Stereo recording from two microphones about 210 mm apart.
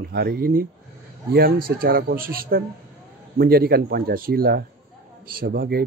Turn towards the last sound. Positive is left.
turn(degrees=-45)  # may be behind; listen again after turning